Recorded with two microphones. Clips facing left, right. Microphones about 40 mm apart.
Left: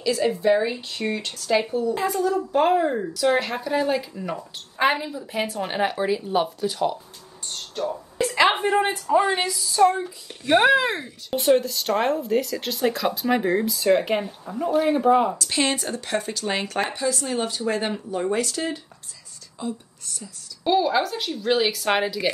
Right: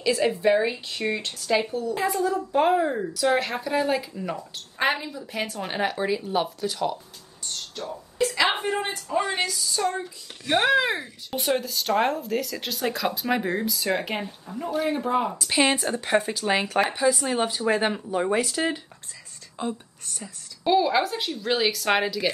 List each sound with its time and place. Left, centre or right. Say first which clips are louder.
0.5 s speech: left 1 dB; centre
1.7 s speech: left 4 dB; centre
2.0 s speech: left 2 dB; centre
7.7 s speech: left 7 dB; left
9.9 s a child's voice: left 3 dB; left
10.6 s speech: right 1 dB; centre
15.3 s speech: right 2 dB; centre
19.6 s speech: right 1 dB; right
20.6 s speech: even; centre